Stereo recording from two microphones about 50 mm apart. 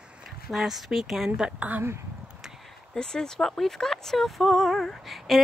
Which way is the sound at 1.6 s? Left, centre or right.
Right.